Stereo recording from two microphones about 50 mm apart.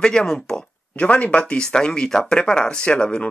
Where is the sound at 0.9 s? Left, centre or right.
Left.